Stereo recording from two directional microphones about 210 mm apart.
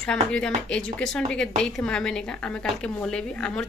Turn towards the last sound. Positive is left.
turn(degrees=5)  # may be behind; listen again after turning